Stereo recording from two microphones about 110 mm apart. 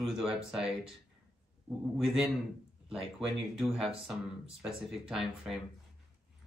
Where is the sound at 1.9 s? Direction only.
5° right (ahead or behind).